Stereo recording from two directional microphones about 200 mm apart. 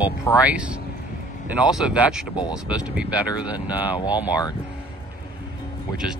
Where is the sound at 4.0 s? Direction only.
20° left (ahead or behind).